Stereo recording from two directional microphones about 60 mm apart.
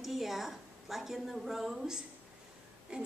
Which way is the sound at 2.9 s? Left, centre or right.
Centre.